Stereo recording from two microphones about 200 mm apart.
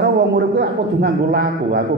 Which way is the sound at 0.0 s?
60° right (ahead or behind).